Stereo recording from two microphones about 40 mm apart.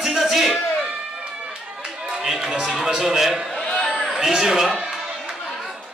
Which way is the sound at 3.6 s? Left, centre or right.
Left.